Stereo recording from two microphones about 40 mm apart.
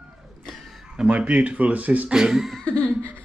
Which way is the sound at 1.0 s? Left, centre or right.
Right.